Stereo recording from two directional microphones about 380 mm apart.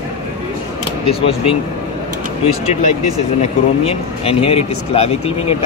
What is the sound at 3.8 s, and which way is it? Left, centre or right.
Speech, centre.